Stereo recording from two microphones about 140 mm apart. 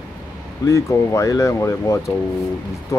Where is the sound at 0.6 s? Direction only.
20° left (ahead or behind).